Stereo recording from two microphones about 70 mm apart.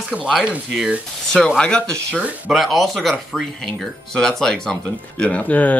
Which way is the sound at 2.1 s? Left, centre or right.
Centre.